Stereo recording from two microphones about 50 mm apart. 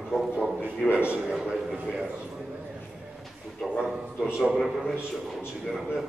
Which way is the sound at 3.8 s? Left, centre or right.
Centre.